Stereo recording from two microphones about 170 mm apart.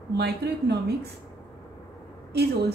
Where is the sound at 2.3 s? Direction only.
75° right (ahead or behind).